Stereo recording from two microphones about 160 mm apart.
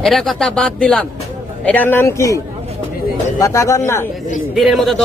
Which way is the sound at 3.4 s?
20° left (ahead or behind).